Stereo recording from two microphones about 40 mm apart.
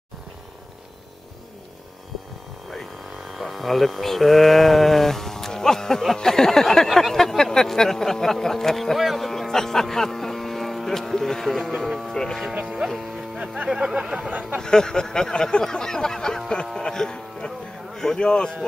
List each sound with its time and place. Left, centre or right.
2.7 s a sound: centre
8.9 s vehicle: centre
12.1 s speech: centre
12.8 s speech: centre
14.6 s speech: centre